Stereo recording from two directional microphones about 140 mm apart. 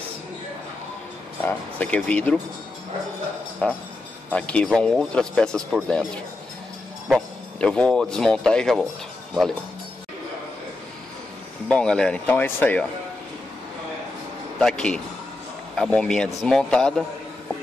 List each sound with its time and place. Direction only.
1.4 s speech: 10° left (ahead or behind)
3.6 s speech: 10° left (ahead or behind)
11.7 s speech: 5° left (ahead or behind)
14.6 s speech: 5° left (ahead or behind)